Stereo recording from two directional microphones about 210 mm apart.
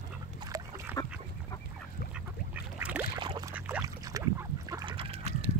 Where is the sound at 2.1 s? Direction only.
5° right (ahead or behind).